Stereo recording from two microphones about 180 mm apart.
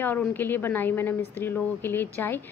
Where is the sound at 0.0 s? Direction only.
10° left (ahead or behind).